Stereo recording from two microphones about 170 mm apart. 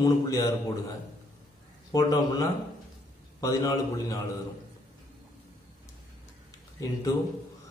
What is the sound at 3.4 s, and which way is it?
Speech, 20° left (ahead or behind).